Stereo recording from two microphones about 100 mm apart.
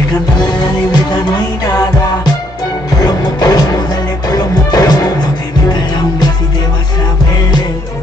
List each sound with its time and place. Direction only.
0.4 s music: 45° left (ahead or behind)